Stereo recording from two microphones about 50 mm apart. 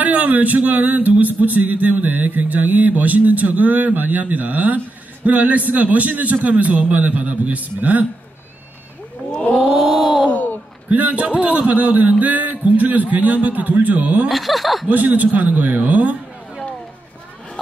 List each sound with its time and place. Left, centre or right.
0.0 s speech: right
9.8 s speech: centre
10.3 s a sound: left
10.9 s speech: right
14.3 s speech: centre
14.9 s speech: right